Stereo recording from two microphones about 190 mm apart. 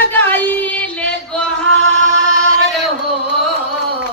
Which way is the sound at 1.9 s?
15° right (ahead or behind).